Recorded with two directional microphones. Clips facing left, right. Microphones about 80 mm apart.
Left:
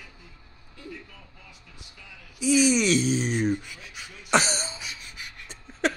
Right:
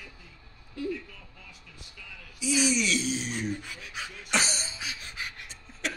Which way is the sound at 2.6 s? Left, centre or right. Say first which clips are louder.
Left 6 dB; left.